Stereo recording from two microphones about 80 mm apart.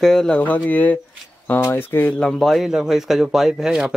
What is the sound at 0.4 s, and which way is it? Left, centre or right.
Speech, left.